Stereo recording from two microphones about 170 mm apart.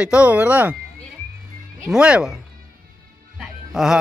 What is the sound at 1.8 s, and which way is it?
Speech, 5° right (ahead or behind).